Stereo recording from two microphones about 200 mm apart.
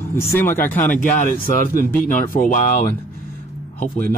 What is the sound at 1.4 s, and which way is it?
Speech, 45° right (ahead or behind).